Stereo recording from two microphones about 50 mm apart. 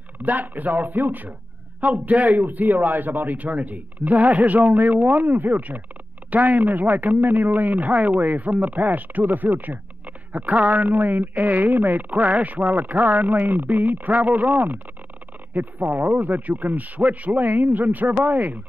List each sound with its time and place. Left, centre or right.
0.2 s speech: right